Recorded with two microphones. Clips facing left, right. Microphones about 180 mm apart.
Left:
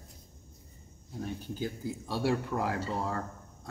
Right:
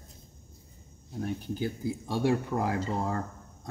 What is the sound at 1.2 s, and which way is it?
Speech, 10° right (ahead or behind).